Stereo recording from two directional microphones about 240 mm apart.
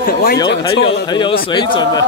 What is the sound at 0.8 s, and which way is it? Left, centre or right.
Speech, left.